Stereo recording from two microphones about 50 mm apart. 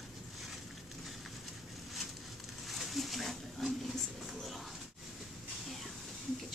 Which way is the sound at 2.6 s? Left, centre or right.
Centre.